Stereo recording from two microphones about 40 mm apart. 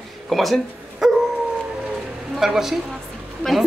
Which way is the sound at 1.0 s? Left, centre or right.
Centre.